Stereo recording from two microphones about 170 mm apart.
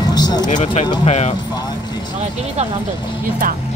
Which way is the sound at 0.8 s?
25° left (ahead or behind).